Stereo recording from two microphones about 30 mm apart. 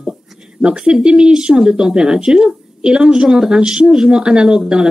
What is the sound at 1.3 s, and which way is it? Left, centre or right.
A woman's voice, right.